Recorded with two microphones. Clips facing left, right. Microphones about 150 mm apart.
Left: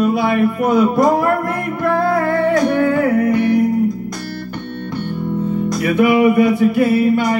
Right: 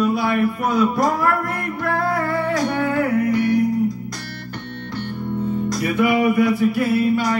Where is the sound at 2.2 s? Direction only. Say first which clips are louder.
Left 6 dB; 55° left (ahead or behind).